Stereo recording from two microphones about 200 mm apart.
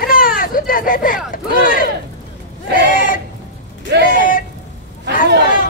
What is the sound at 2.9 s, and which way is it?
Speech, 40° left (ahead or behind).